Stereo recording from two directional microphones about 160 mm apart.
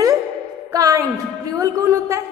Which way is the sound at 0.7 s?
20° right (ahead or behind).